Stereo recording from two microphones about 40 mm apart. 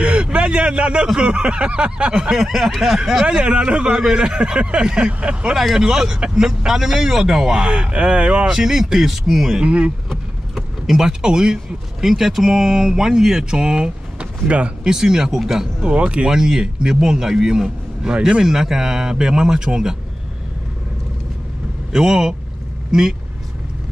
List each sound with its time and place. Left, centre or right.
0.0 s a sound: right
1.2 s speech: right
2.1 s speech: centre
3.3 s speech: right
5.5 s speech: centre
7.6 s speech: right
8.5 s speech: centre
9.6 s speech: right
10.5 s speech: centre
15.8 s speech: right
16.3 s speech: centre
21.9 s speech: centre